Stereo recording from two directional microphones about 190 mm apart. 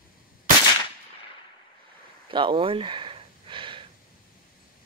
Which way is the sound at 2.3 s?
25° right (ahead or behind).